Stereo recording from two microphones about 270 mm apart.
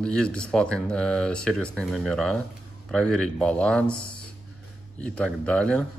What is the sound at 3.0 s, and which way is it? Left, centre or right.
Speech, right.